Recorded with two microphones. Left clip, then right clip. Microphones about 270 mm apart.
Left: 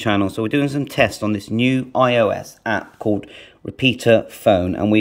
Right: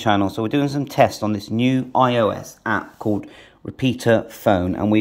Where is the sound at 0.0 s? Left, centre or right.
Centre.